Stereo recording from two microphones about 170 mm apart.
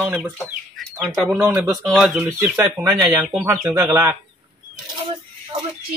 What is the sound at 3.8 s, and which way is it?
Speech, 20° right (ahead or behind).